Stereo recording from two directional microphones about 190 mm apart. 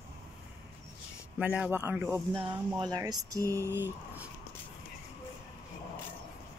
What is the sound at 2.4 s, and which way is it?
Speech, 20° right (ahead or behind).